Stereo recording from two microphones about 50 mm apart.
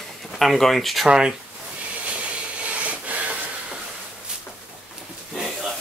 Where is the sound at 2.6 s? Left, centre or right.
Right.